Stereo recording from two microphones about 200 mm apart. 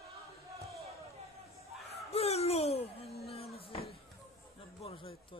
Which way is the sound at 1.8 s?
30° left (ahead or behind).